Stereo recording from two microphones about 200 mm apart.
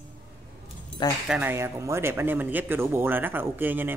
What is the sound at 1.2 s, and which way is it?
Speech, 10° right (ahead or behind).